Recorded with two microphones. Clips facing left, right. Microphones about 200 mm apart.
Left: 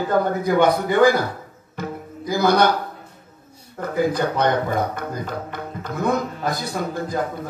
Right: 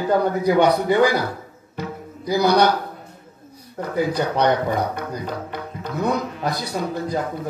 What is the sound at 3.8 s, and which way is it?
Speech, 50° left (ahead or behind).